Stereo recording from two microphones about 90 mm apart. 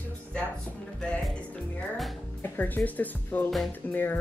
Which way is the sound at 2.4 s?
20° left (ahead or behind).